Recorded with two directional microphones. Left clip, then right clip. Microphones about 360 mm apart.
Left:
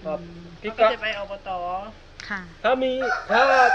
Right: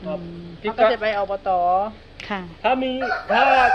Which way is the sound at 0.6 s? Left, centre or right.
Left.